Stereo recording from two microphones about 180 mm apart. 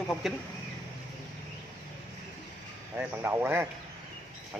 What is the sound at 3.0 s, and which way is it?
Speech, 10° right (ahead or behind).